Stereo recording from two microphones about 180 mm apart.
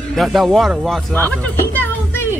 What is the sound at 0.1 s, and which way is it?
Speech, centre (ahead or behind).